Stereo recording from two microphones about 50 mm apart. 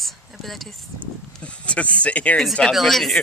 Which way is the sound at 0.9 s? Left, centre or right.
Left.